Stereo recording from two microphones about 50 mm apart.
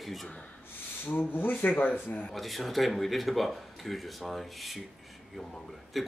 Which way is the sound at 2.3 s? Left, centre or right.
Centre.